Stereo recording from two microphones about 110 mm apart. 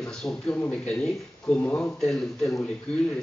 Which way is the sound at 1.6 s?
15° left (ahead or behind).